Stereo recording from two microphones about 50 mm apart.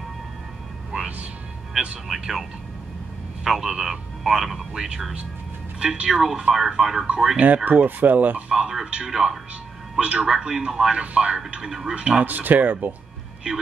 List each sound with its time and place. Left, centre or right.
0.9 s music: right
2.0 s a man's voice: centre
3.4 s a man's voice: centre
4.7 s a man's voice: centre
7.3 s speech: right
8.5 s a man's voice: centre
12.3 s speech: right